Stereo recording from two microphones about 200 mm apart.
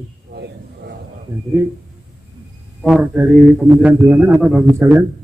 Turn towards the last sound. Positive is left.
turn(degrees=-10)  # may be behind; listen again after turning